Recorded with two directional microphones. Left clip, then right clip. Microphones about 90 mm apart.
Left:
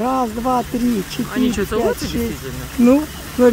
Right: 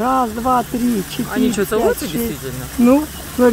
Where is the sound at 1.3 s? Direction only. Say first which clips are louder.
Right 3 dB; 20° right (ahead or behind).